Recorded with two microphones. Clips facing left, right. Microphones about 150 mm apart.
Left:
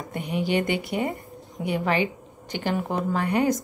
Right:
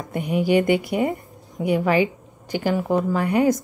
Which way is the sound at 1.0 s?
20° right (ahead or behind).